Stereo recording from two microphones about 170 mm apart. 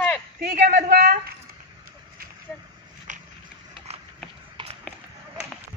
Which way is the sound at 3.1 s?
50° right (ahead or behind).